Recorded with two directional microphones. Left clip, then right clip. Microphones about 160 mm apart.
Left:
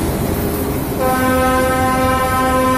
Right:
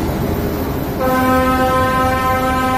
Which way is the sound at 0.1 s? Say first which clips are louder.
Even; 65° left (ahead or behind).